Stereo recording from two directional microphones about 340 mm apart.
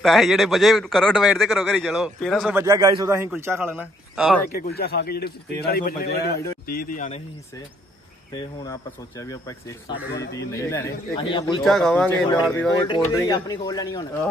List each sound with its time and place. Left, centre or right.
0.0 s a man's voice: centre
4.5 s a man's voice: left
8.3 s a man's voice: centre
11.6 s a man's voice: centre